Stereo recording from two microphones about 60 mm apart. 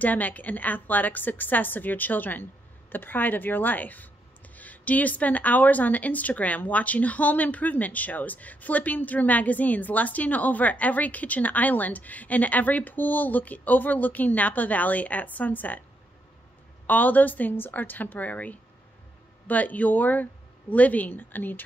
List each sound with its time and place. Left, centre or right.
0.0 s a woman's voice: left
16.8 s a woman's voice: left